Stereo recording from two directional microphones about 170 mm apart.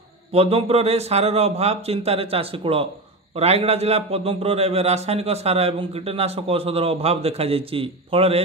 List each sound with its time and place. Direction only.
0.3 s a man's voice: 35° right (ahead or behind)